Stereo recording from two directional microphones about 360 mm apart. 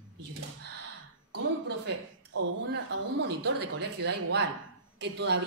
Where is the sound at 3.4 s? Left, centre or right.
Right.